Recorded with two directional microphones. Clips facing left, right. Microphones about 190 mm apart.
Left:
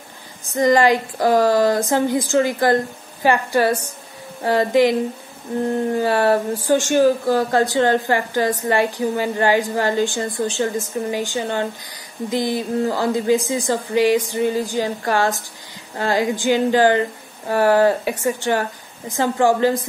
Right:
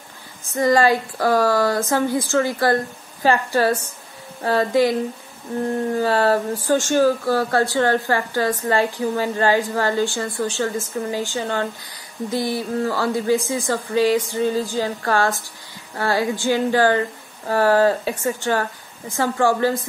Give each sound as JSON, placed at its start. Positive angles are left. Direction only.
{"t": 0.6, "sound": "speech", "side_deg": 20}
{"t": 5.9, "sound": "speech", "side_deg": 15}